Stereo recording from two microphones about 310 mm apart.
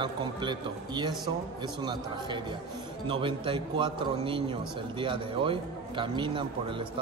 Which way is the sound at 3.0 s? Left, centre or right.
Centre.